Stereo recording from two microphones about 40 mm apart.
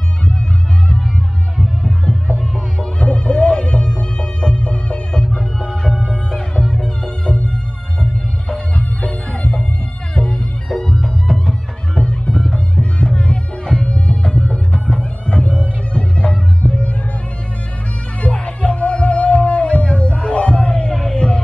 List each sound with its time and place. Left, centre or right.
3.0 s music: left
5.9 s music: centre
6.3 s music: centre
8.7 s music: left
10.7 s music: centre
11.0 s music: centre
11.9 s music: left
13.0 s music: left
18.2 s music: left